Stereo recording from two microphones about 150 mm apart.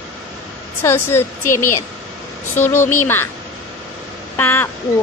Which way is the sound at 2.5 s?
15° left (ahead or behind).